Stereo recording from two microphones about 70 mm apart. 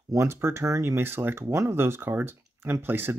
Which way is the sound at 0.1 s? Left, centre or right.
Right.